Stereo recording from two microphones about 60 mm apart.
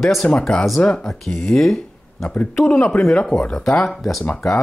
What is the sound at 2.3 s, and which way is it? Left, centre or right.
Speech, left.